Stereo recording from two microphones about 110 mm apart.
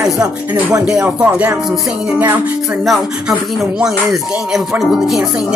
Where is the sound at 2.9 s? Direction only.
5° right (ahead or behind).